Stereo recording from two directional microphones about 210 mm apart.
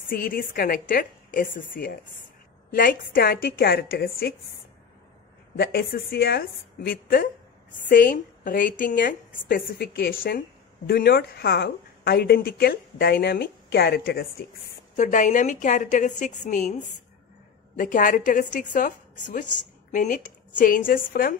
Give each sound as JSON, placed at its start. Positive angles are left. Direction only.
{"t": 0.1, "sound": "a woman's voice", "side_deg": 45}
{"t": 5.6, "sound": "a woman's voice", "side_deg": 50}
{"t": 15.0, "sound": "a woman's voice", "side_deg": 35}
{"t": 17.7, "sound": "a woman's voice", "side_deg": 40}